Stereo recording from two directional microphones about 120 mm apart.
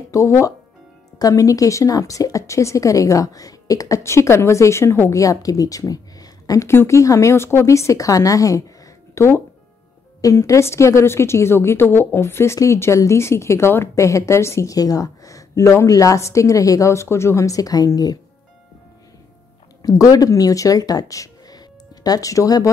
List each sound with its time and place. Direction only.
0.1 s a woman's voice: 25° left (ahead or behind)
19.8 s speech: 30° left (ahead or behind)